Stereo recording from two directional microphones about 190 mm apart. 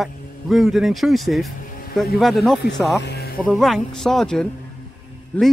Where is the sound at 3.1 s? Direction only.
55° left (ahead or behind).